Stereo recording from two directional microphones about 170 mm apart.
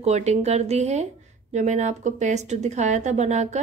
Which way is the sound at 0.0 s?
40° right (ahead or behind).